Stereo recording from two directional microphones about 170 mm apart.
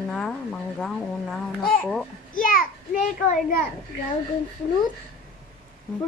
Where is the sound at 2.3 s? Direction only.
55° left (ahead or behind).